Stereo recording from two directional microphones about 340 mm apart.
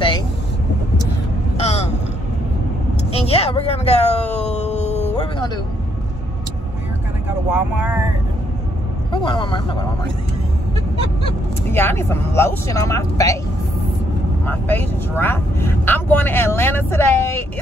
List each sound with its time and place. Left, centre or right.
1.6 s a sound: centre
3.1 s a sound: centre
7.5 s speech: centre
9.1 s speech: centre
11.7 s speech: centre
14.4 s speech: centre